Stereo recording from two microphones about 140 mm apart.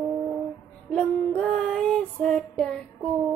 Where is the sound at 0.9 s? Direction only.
5° left (ahead or behind).